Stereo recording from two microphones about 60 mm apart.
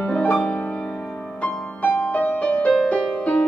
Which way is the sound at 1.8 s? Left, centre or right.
Left.